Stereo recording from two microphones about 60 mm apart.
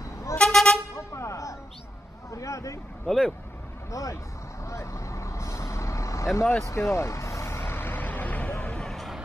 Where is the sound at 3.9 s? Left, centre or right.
Left.